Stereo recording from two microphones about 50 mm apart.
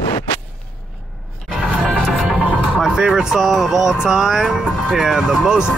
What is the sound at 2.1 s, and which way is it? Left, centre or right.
Speech, centre.